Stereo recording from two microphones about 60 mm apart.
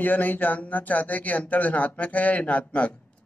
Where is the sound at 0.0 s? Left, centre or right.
Left.